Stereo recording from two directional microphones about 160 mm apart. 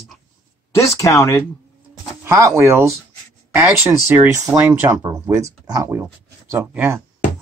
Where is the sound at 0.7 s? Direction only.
20° left (ahead or behind).